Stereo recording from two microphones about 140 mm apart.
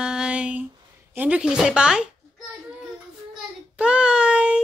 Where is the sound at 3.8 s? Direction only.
5° right (ahead or behind).